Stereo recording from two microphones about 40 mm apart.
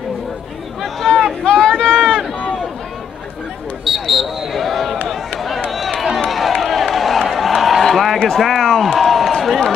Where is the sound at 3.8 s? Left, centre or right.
Centre.